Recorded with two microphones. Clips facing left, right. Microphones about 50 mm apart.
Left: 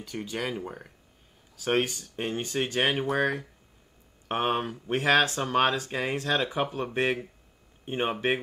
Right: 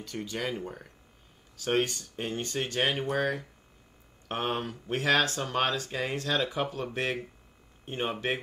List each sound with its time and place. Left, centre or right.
0.0 s speech: centre